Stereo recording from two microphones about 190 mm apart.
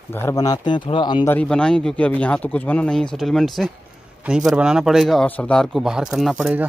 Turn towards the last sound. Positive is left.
turn(degrees=-5)  # may be behind; listen again after turning